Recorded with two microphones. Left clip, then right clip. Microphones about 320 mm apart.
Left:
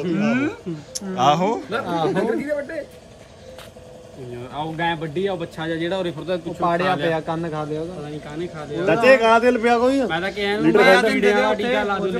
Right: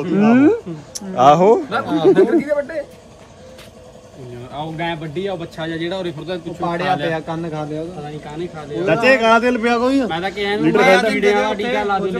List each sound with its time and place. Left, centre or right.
0.1 s a man's voice: centre
2.2 s a man's voice: centre
4.6 s a man's voice: centre
8.8 s a man's voice: right
10.0 s a man's voice: centre